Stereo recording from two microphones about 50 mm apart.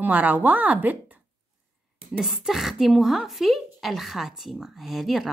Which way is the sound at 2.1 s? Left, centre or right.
Centre.